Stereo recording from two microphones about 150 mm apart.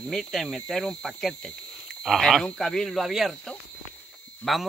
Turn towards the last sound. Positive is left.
turn(degrees=0)  # may be behind; listen again after turning